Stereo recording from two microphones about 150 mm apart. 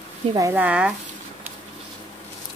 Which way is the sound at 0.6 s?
10° right (ahead or behind).